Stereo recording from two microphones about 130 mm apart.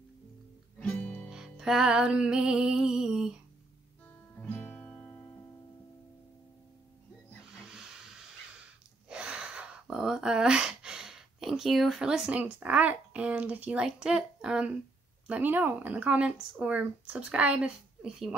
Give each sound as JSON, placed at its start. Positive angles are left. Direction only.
{"t": 0.7, "sound": "music", "side_deg": 10}
{"t": 4.4, "sound": "guitar", "side_deg": 15}
{"t": 7.6, "sound": "hiss", "side_deg": -5}
{"t": 9.1, "sound": "speech", "side_deg": -5}